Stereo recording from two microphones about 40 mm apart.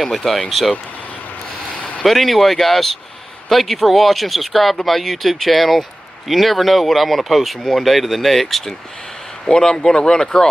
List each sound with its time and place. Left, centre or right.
0.0 s speech: centre
2.0 s speech: centre
9.5 s speech: centre